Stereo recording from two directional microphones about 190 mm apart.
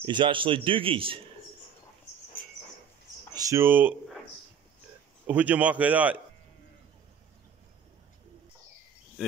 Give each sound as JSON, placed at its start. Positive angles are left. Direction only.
{"t": 0.0, "sound": "speech", "side_deg": -25}
{"t": 3.3, "sound": "speech", "side_deg": -15}
{"t": 5.2, "sound": "a man's voice", "side_deg": -10}